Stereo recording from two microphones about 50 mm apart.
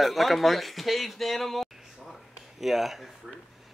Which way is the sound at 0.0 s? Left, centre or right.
Centre.